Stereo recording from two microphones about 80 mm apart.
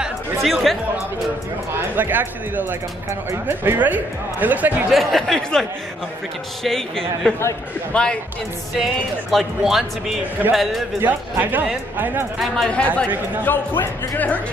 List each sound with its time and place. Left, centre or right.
0.4 s speech: centre
2.0 s speech: right
4.9 s speech: centre
8.7 s speech: centre
11.0 s speech: right
12.6 s speech: centre